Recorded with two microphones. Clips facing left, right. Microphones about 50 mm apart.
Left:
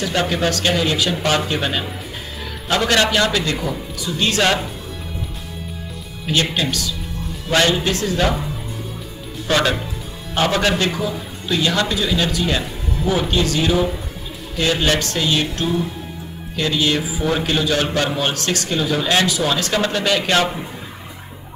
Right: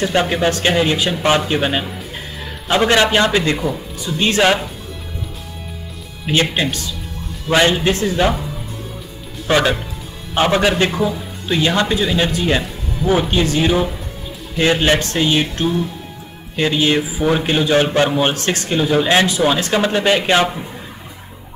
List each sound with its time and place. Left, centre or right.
0.0 s speech: right
6.2 s speech: right
7.5 s speech: centre
9.5 s a man's voice: right